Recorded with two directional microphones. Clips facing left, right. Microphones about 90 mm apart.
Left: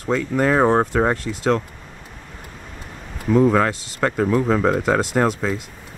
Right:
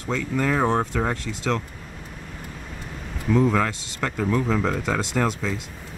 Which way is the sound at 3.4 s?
45° left (ahead or behind).